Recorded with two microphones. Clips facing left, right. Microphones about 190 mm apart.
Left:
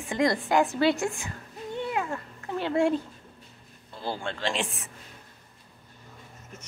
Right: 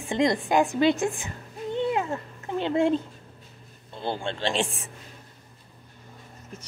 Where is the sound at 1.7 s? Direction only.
25° right (ahead or behind).